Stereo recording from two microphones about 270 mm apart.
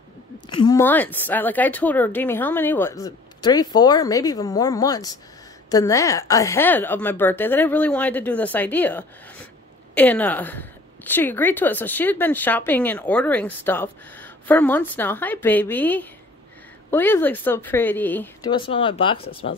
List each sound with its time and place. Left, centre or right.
0.5 s a woman's voice: centre